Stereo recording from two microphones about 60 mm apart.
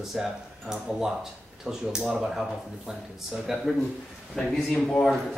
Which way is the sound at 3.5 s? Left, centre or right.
Centre.